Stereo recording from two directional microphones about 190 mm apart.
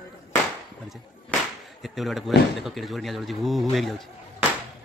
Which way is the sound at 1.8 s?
Centre (ahead or behind).